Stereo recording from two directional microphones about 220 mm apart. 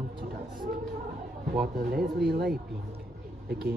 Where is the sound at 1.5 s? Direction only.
45° right (ahead or behind).